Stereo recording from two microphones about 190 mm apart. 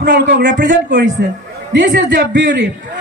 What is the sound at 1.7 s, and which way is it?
Speech, 70° right (ahead or behind).